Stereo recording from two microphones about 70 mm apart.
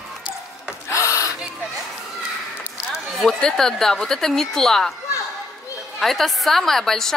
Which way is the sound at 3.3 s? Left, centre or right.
Centre.